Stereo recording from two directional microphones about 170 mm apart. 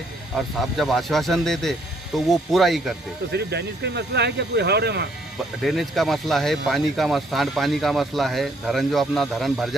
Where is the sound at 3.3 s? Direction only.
80° right.